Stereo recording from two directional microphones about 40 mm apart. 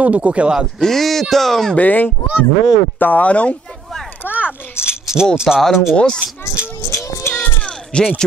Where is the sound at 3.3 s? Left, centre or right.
Left.